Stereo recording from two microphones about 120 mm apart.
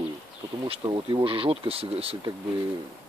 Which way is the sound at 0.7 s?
40° right (ahead or behind).